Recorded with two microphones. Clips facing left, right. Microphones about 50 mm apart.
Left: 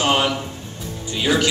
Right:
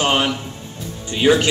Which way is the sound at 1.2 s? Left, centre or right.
Right.